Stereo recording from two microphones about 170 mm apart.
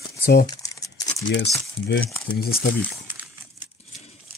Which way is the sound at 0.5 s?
20° left (ahead or behind).